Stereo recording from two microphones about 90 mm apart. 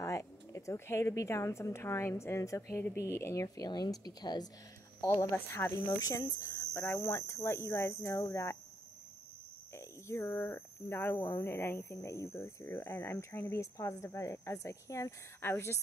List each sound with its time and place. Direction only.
0.0 s a woman's voice: 35° left (ahead or behind)
3.4 s speech: 45° left (ahead or behind)
5.0 s speech: 35° left (ahead or behind)
5.9 s a woman's voice: 40° left (ahead or behind)
9.8 s a woman's voice: 30° left (ahead or behind)